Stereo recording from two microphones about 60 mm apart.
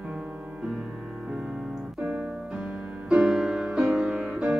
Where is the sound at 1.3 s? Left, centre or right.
Centre.